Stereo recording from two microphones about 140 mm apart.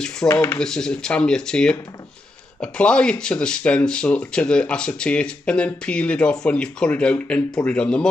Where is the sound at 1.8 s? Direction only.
25° left (ahead or behind).